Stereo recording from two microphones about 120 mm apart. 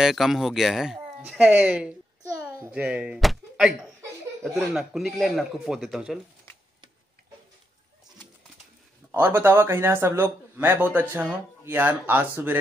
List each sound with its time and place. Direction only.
0.0 s speech: 5° right (ahead or behind)
3.2 s a sound: centre (ahead or behind)
4.7 s speech: centre (ahead or behind)
9.1 s speech: 20° right (ahead or behind)